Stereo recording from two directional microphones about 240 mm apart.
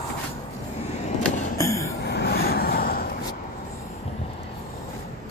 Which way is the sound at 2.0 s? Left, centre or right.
Left.